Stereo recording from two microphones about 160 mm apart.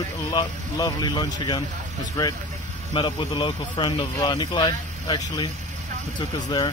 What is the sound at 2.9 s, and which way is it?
Speech, 30° left (ahead or behind).